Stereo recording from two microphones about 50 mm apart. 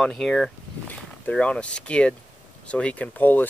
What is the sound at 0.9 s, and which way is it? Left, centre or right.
Speech, left.